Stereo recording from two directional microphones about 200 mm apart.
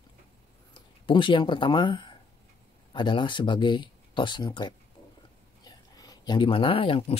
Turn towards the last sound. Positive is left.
turn(degrees=25)  # may be behind; listen again after turning